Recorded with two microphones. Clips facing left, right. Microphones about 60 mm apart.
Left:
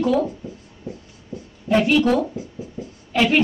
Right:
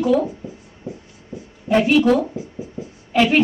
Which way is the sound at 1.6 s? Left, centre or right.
Centre.